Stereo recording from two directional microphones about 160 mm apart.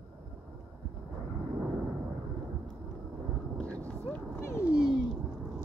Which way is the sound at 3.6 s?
10° left (ahead or behind).